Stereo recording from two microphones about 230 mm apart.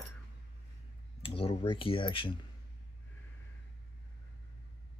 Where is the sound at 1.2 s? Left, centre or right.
Left.